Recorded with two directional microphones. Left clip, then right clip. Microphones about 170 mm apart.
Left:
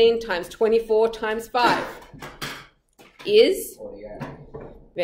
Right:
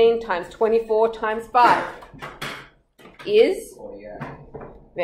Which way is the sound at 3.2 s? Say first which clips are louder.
Even; 25° left (ahead or behind).